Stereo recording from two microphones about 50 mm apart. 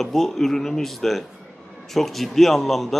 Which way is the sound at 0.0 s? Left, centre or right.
Centre.